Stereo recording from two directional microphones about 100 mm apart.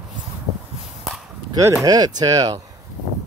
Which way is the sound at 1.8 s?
40° right (ahead or behind).